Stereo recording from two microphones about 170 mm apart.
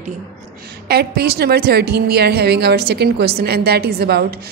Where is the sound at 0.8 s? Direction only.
70° right (ahead or behind).